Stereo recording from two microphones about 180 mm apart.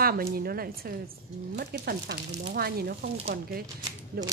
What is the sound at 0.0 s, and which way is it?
Speech, 55° right (ahead or behind).